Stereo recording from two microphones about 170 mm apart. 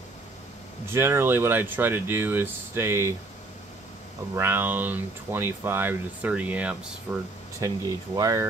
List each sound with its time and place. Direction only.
0.8 s speech: 15° right (ahead or behind)
4.4 s speech: 15° right (ahead or behind)
7.6 s speech: 20° right (ahead or behind)